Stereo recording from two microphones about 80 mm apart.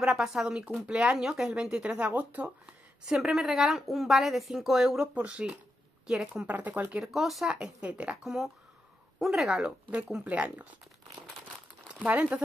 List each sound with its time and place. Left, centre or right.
0.0 s speech: centre
3.1 s a woman's voice: centre
5.1 s speech: centre
7.1 s speech: centre
8.2 s a woman's voice: centre
11.9 s speech: centre